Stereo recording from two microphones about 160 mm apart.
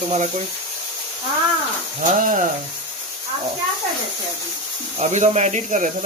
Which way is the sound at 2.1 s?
55° right (ahead or behind).